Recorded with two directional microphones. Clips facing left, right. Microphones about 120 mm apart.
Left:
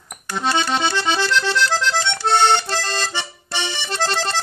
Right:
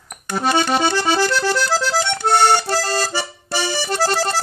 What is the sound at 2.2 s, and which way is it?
Music, 10° right (ahead or behind).